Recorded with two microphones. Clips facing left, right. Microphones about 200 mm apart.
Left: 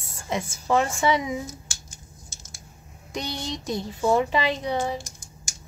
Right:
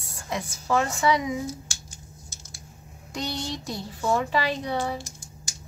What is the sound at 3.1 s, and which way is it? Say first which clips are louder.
Speech: even; 20° left (ahead or behind).